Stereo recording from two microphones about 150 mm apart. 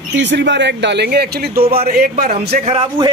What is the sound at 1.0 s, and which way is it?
A man's voice, 90° right.